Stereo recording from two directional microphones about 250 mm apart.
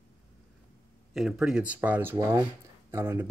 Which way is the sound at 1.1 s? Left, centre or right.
Centre.